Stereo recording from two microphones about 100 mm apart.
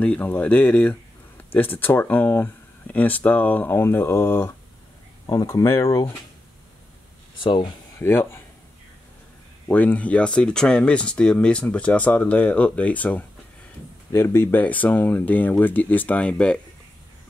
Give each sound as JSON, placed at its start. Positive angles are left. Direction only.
{"t": 0.0, "sound": "speech", "side_deg": 15}
{"t": 5.2, "sound": "speech", "side_deg": 40}
{"t": 5.5, "sound": "speech", "side_deg": 25}
{"t": 7.3, "sound": "speech", "side_deg": 55}
{"t": 8.0, "sound": "speech", "side_deg": 25}
{"t": 9.7, "sound": "speech", "side_deg": 15}